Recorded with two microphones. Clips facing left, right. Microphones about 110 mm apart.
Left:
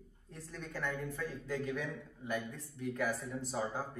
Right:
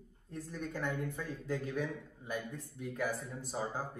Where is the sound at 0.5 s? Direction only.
15° right (ahead or behind).